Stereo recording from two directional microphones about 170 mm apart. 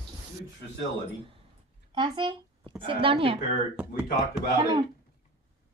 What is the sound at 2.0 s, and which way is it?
A woman's voice, 30° right (ahead or behind).